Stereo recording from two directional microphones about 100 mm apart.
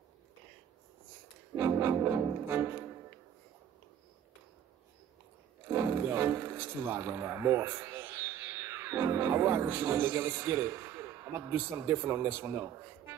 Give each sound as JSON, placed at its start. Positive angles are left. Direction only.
{"t": 1.6, "sound": "music", "side_deg": -25}
{"t": 5.7, "sound": "speech", "side_deg": -25}